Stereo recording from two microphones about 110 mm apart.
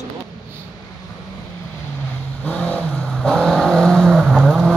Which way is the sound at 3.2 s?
Centre (ahead or behind).